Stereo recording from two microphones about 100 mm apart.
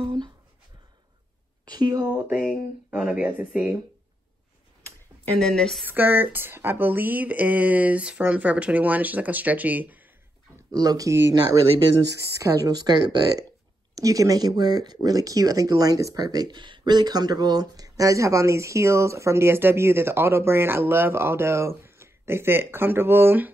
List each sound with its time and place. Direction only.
1.7 s speech: 45° right (ahead or behind)
2.0 s speech: 15° right (ahead or behind)
5.4 s a woman's voice: 5° left (ahead or behind)
5.9 s speech: 20° right (ahead or behind)
10.7 s speech: 40° right (ahead or behind); by 23.5 s 20° right (ahead or behind)